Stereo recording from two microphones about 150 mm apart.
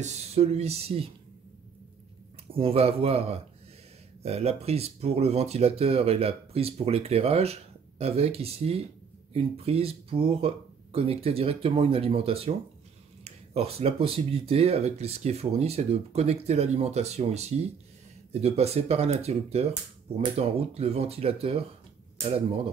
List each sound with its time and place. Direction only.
0.0 s speech: 45° right (ahead or behind)
2.5 s speech: 40° right (ahead or behind)